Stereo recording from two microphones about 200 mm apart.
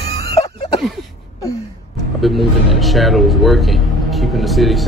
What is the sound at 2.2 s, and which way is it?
Speech, centre (ahead or behind).